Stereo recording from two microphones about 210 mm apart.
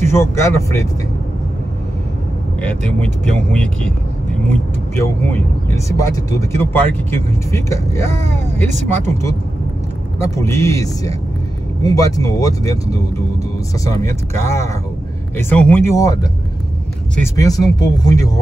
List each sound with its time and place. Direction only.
0.0 s speech: 10° left (ahead or behind)
2.6 s speech: 5° left (ahead or behind)
5.0 s speech: 10° left (ahead or behind)
8.5 s speech: 35° right (ahead or behind)
10.1 s speech: 15° left (ahead or behind)
17.4 s speech: 20° left (ahead or behind)